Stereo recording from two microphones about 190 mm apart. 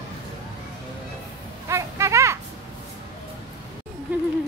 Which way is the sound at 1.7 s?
15° right (ahead or behind).